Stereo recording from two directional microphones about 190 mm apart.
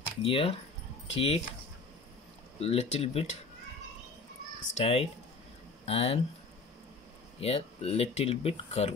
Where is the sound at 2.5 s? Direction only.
35° left (ahead or behind).